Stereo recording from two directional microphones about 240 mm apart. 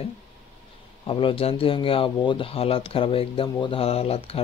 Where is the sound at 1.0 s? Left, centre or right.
Left.